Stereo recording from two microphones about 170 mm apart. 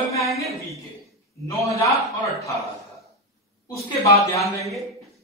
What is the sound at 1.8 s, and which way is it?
Speech, 20° left (ahead or behind).